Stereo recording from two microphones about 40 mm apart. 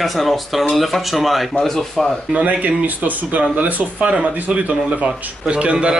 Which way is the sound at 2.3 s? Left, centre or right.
Right.